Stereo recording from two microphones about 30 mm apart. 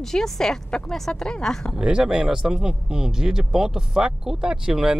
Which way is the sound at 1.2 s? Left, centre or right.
Left.